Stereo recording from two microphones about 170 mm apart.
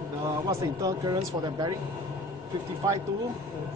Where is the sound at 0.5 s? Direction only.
20° right (ahead or behind).